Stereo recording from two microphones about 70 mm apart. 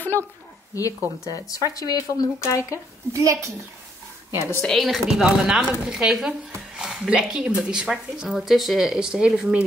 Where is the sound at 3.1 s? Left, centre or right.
Right.